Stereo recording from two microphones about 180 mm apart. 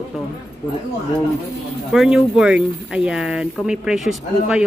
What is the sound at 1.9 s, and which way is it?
Speech, 5° right (ahead or behind).